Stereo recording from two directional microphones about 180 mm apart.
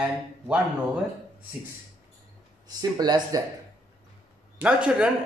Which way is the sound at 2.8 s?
20° right (ahead or behind).